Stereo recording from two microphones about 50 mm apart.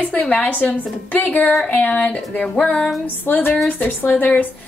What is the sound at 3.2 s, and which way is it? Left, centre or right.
Speech, left.